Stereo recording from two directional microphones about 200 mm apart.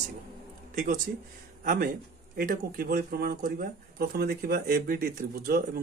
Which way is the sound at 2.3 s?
45° right (ahead or behind).